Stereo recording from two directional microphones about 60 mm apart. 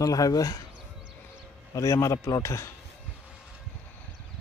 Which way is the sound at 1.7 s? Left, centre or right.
Left.